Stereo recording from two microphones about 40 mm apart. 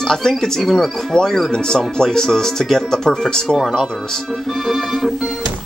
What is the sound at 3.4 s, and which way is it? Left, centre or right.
Music, centre.